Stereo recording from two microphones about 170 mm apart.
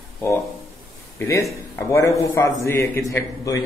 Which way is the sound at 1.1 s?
15° left (ahead or behind).